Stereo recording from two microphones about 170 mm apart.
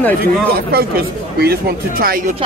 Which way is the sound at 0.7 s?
65° right (ahead or behind).